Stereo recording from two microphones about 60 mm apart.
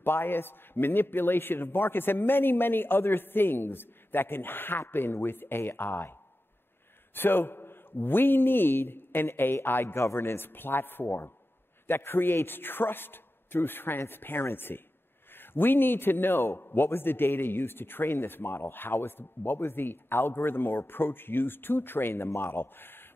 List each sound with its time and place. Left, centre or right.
0.0 s a man's voice: left
7.2 s a man's voice: left